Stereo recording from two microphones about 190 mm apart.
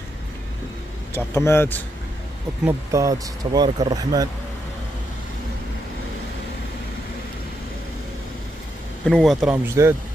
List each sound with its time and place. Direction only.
1.1 s speech: 15° left (ahead or behind)
2.6 s speech: 15° right (ahead or behind)
9.0 s a man's voice: centre (ahead or behind)